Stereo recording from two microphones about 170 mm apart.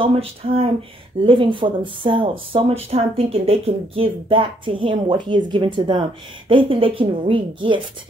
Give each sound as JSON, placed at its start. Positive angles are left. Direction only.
{"t": 0.0, "sound": "speech", "side_deg": -35}